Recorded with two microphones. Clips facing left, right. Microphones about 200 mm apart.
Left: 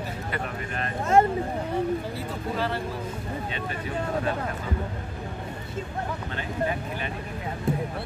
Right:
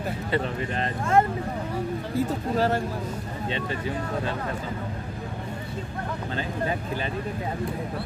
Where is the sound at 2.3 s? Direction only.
45° right (ahead or behind).